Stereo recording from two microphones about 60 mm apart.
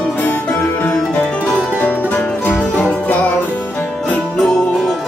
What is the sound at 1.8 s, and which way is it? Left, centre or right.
Music, left.